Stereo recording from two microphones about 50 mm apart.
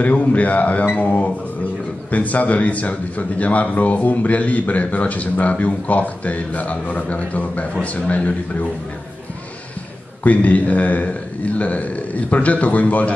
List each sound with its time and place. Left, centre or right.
0.0 s a man's voice: left
10.2 s a man's voice: left